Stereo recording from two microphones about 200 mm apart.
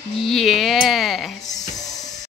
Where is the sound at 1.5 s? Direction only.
20° left (ahead or behind).